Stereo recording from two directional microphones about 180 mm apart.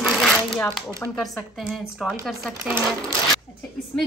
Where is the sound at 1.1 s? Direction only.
Centre (ahead or behind).